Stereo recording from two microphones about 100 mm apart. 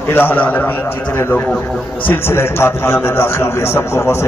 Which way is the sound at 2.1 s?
25° left (ahead or behind).